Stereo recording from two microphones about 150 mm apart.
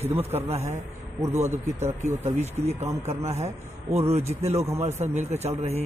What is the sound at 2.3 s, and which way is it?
Speech, 45° right (ahead or behind).